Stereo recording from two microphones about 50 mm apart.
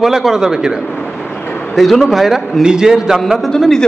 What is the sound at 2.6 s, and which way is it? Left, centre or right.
Speech, centre.